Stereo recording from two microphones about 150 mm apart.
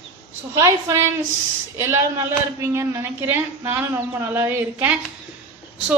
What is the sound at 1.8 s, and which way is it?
A woman's voice, 20° right (ahead or behind).